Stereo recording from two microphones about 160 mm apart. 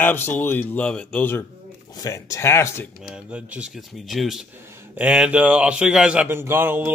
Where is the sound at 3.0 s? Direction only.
5° right (ahead or behind).